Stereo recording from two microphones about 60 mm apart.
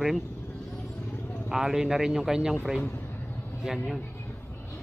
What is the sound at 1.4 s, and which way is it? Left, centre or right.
Speech, centre.